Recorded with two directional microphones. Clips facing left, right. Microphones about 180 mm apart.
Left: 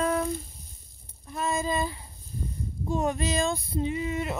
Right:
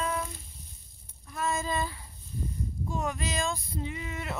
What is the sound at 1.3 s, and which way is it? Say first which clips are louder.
Speech: left 3 dB; 20° left (ahead or behind).